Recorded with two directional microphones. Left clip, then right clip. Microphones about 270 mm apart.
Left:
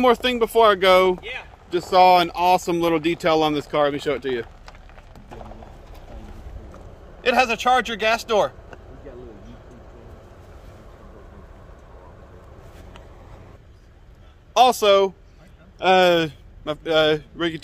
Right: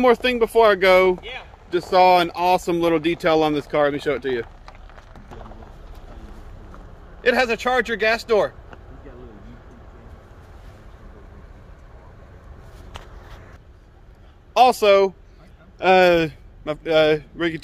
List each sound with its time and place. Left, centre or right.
0.0 s speech: centre
4.6 s vehicle: left
7.2 s speech: centre
14.5 s a man's voice: centre